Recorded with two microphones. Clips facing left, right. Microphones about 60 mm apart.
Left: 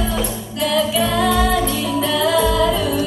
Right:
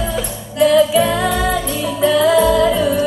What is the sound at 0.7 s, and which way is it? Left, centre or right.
Music, right.